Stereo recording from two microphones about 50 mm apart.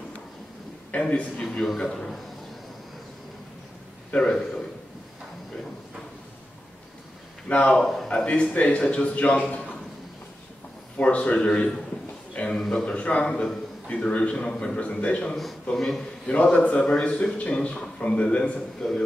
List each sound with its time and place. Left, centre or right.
0.9 s a man's voice: left
1.6 s a man's voice: centre
4.2 s a man's voice: centre
7.4 s a man's voice: left
11.0 s a man's voice: left
15.7 s a man's voice: centre
16.3 s a man's voice: left